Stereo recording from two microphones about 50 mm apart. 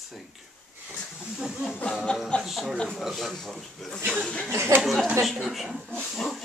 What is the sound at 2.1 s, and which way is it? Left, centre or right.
Speech, left.